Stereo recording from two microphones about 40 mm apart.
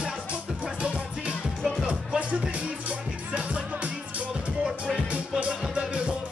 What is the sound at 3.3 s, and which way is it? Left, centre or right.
Music, right.